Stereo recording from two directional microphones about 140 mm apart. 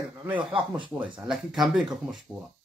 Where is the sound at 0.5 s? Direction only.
35° right (ahead or behind).